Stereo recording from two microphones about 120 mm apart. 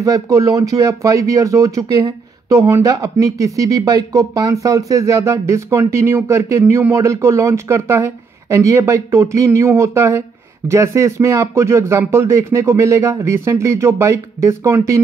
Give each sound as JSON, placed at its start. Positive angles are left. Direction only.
{"t": 0.0, "sound": "speech", "side_deg": -30}